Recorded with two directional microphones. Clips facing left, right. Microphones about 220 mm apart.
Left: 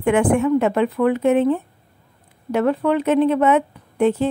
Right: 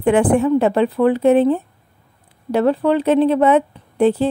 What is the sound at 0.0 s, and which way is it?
Speech, 35° right (ahead or behind).